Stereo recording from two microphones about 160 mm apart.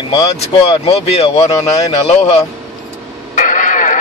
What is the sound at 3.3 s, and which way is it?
Radio, 50° left (ahead or behind).